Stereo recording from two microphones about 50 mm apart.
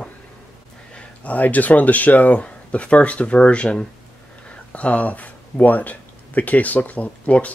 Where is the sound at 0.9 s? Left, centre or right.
Left.